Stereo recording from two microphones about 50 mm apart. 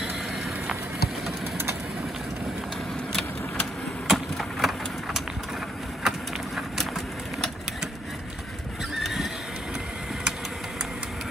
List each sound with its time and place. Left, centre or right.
4.1 s vehicle: centre
6.0 s a sound: centre
8.9 s neigh: centre